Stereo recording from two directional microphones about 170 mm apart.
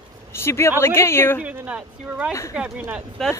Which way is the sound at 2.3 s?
20° left (ahead or behind).